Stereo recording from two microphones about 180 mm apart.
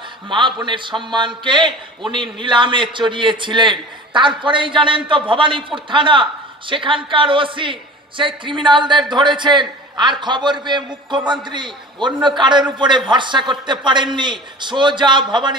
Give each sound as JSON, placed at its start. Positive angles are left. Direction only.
{"t": 0.3, "sound": "a man's voice", "side_deg": -25}